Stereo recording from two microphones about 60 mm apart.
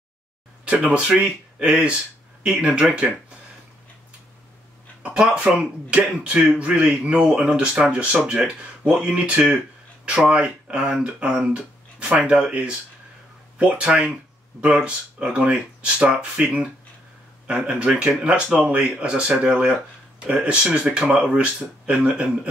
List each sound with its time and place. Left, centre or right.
0.8 s speech: centre
5.0 s speech: centre